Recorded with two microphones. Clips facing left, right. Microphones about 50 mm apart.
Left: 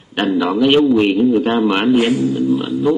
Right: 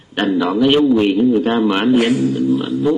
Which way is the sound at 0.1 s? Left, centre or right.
Centre.